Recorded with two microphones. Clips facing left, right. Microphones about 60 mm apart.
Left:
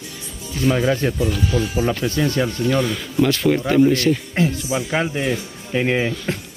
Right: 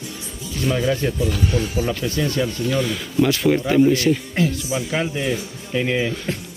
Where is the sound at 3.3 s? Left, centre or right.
Centre.